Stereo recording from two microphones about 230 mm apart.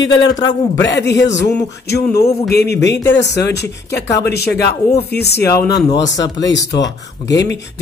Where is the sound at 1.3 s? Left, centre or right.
Left.